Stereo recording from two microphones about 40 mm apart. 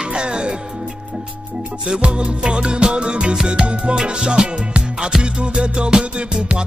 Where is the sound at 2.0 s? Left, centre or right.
Right.